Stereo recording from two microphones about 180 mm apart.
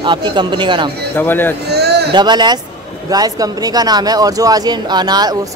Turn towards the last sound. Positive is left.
turn(degrees=-20)  # may be behind; listen again after turning